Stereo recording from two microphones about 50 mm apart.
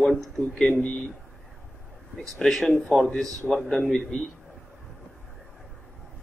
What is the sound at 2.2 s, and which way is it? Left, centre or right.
Speech, centre.